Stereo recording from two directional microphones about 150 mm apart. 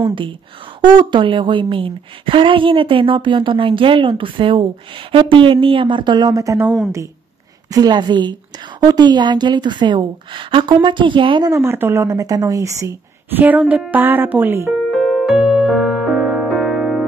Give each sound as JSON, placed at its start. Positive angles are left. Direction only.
{"t": 0.7, "sound": "a woman's voice", "side_deg": -30}
{"t": 7.7, "sound": "a woman's voice", "side_deg": -30}
{"t": 11.5, "sound": "speech", "side_deg": -15}
{"t": 14.9, "sound": "music", "side_deg": 0}